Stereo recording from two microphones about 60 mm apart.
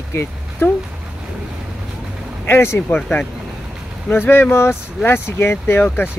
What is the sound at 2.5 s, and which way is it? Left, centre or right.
Speech, left.